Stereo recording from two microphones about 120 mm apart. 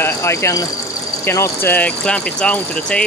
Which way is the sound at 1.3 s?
20° left (ahead or behind).